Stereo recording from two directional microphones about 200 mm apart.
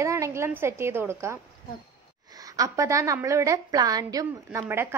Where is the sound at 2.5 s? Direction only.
15° right (ahead or behind).